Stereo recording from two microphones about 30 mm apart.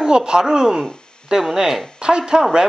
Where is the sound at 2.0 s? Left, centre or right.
Right.